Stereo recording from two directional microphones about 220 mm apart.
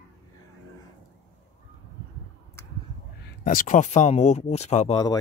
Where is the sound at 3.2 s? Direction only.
40° left (ahead or behind).